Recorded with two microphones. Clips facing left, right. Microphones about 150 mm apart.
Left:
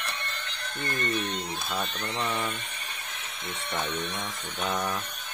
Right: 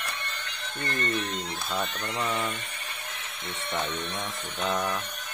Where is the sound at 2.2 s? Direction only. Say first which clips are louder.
Right 1 dB; 5° left (ahead or behind).